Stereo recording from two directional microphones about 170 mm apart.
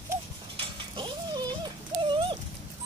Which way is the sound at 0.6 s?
30° right (ahead or behind).